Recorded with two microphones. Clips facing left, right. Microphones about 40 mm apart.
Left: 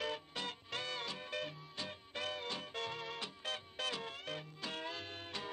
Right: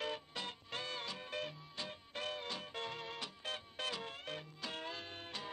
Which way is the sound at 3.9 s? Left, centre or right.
Left.